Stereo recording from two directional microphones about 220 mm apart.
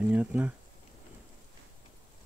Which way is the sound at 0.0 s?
5° right (ahead or behind).